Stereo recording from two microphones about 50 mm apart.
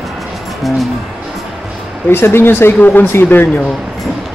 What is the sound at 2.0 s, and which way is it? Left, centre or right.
Speech, left.